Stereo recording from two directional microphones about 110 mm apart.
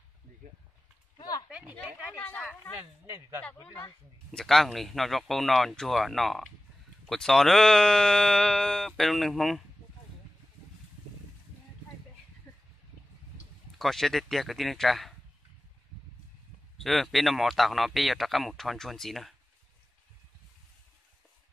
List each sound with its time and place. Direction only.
1.5 s speech: 15° right (ahead or behind)
2.1 s speech: 10° left (ahead or behind)
3.1 s speech: 30° right (ahead or behind)
4.3 s speech: 5° left (ahead or behind)
12.5 s a sound: 15° left (ahead or behind)
13.7 s speech: centre (ahead or behind)
16.7 s speech: centre (ahead or behind)